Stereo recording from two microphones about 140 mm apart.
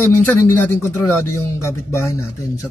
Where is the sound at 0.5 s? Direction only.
15° left (ahead or behind).